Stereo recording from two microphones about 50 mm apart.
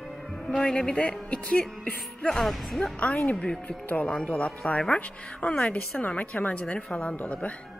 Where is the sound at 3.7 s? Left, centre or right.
Left.